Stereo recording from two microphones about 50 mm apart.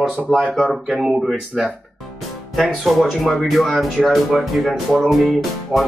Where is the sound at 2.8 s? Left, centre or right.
Centre.